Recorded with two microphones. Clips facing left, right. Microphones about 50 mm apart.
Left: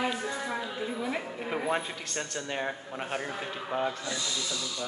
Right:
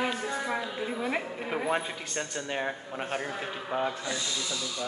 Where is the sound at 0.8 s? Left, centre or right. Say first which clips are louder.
Right 2 dB; right.